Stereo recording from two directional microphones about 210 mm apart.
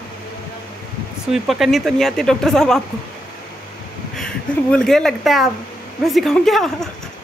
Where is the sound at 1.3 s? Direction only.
Centre (ahead or behind).